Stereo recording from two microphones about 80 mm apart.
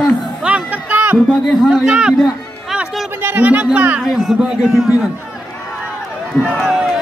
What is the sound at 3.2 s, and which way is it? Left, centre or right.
Speech, right.